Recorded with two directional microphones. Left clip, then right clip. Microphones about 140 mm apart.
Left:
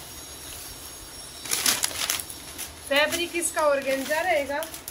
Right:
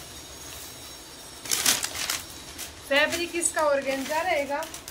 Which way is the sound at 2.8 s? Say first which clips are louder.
Even; 5° right (ahead or behind).